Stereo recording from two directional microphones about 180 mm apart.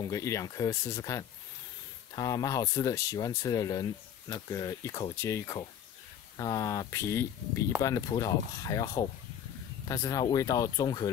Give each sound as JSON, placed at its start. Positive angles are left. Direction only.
{"t": 0.1, "sound": "speech", "side_deg": 15}